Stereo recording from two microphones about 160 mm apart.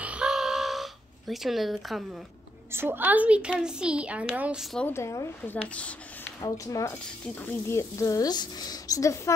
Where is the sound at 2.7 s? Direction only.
15° right (ahead or behind).